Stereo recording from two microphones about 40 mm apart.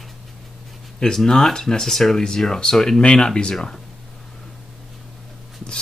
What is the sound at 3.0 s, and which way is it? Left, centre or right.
Speech, left.